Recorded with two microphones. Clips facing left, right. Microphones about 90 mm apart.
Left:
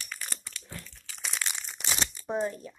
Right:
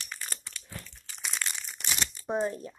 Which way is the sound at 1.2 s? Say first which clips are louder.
Even; 5° left (ahead or behind).